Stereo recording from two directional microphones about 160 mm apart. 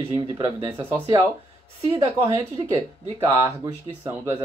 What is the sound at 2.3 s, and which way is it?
Speech, 25° right (ahead or behind).